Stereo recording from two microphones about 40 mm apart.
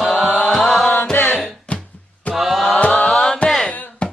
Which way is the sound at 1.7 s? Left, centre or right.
Left.